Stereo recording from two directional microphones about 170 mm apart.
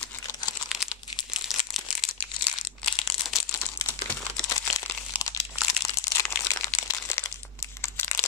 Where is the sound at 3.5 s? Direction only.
15° left (ahead or behind).